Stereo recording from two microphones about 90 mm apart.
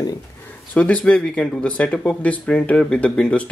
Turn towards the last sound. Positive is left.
turn(degrees=15)  # may be behind; listen again after turning